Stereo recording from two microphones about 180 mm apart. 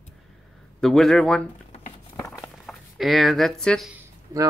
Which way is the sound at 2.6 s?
Centre (ahead or behind).